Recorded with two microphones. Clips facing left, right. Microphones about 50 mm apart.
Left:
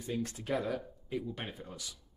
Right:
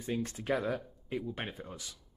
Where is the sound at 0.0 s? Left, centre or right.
Right.